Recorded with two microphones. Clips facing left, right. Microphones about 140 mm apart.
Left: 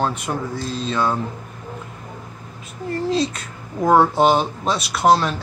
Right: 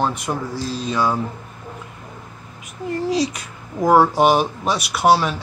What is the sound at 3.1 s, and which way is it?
Speech, 10° right (ahead or behind).